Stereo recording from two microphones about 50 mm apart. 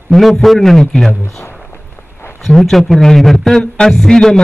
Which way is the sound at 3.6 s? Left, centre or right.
Left.